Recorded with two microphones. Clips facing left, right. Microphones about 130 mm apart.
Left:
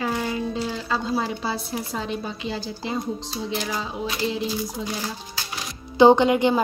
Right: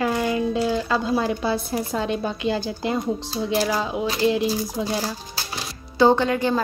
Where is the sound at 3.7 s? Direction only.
75° right (ahead or behind).